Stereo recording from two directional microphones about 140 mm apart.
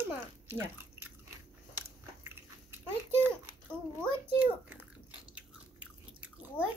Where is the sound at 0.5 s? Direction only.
15° right (ahead or behind).